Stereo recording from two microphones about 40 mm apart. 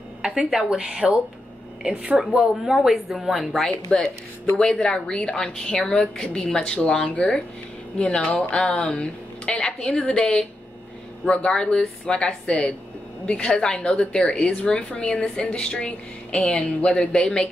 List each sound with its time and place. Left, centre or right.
0.2 s a woman's voice: centre
2.1 s a woman's voice: centre
3.6 s a woman's voice: centre
8.0 s a woman's voice: left